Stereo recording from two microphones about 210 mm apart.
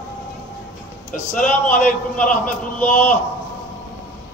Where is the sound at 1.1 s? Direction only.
40° left (ahead or behind).